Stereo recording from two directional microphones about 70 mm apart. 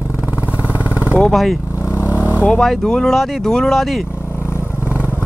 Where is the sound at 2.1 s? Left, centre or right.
Right.